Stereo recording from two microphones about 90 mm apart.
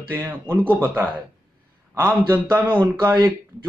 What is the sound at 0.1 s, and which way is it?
Speech, 25° right (ahead or behind).